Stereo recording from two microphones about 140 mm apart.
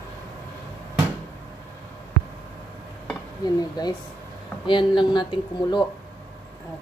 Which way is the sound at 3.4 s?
30° left (ahead or behind).